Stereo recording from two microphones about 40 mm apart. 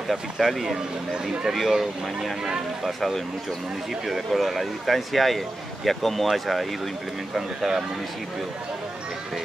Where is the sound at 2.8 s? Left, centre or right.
Centre.